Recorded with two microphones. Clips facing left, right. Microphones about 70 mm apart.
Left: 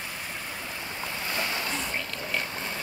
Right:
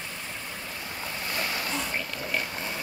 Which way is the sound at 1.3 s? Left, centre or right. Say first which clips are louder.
Even; left.